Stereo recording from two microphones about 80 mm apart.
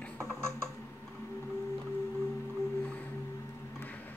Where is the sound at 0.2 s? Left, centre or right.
Right.